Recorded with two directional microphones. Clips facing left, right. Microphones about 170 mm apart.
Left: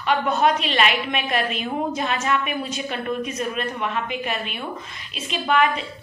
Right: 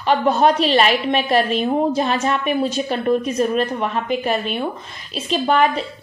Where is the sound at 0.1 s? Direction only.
35° right (ahead or behind).